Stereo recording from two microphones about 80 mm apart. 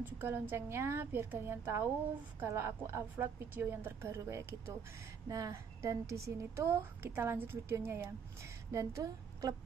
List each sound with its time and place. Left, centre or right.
0.0 s a woman's voice: right